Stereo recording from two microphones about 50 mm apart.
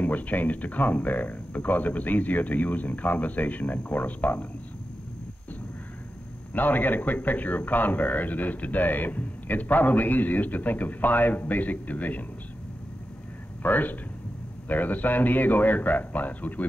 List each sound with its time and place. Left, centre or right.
0.0 s a man's voice: left
6.5 s a man's voice: left
13.6 s a man's voice: left